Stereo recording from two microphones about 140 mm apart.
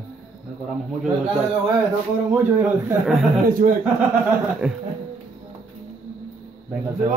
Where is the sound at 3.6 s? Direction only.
85° right.